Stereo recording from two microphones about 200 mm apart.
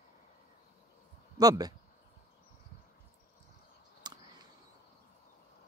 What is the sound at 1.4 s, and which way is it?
Speech, 20° right (ahead or behind).